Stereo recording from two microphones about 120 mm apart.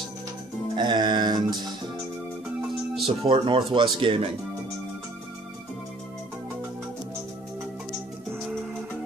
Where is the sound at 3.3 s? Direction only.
40° right (ahead or behind).